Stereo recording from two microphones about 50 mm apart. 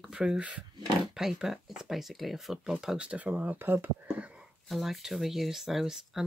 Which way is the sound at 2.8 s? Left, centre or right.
Right.